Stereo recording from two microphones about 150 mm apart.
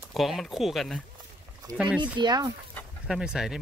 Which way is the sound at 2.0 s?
30° right (ahead or behind).